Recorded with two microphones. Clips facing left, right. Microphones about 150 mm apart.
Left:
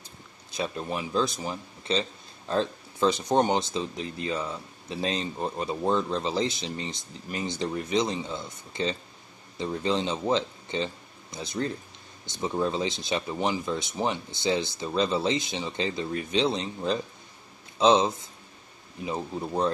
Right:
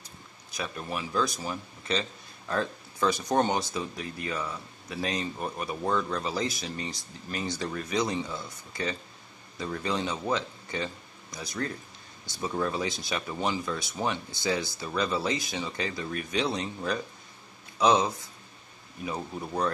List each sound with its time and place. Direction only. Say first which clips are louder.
0.0 s speech: left 1 dB; 25° left (ahead or behind)